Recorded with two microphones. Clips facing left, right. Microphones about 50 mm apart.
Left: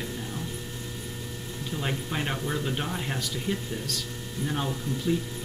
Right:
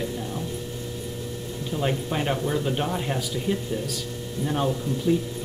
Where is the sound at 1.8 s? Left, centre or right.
Centre.